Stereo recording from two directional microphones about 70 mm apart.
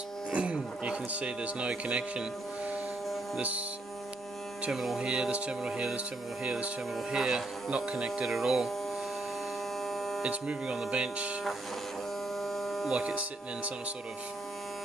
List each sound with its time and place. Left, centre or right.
0.3 s speech: centre
3.3 s speech: centre
4.6 s speech: centre
7.2 s speech: centre
9.8 s hum: centre
10.2 s speech: centre
12.4 s electric shaver: centre
12.9 s speech: centre